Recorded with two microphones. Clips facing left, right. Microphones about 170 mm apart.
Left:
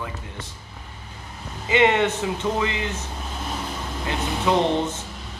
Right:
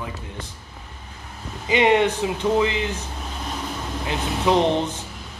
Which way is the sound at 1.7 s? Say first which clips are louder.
Right 1 dB; 15° right (ahead or behind).